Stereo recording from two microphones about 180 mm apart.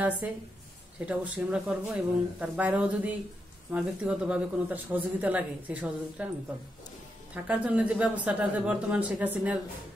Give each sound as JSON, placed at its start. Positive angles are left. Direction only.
{"t": 0.2, "sound": "speech", "side_deg": -10}
{"t": 7.4, "sound": "speech", "side_deg": -5}